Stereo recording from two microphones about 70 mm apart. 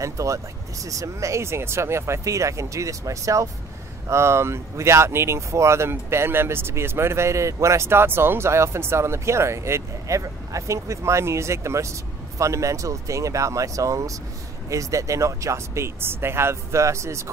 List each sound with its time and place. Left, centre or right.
0.0 s speech: right